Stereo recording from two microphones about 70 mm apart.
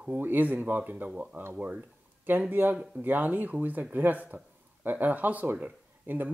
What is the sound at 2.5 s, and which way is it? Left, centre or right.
Speech, right.